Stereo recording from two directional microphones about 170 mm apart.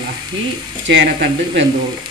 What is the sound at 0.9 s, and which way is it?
Speech, 90° right.